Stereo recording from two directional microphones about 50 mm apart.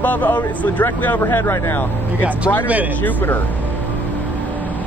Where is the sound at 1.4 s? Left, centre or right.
Left.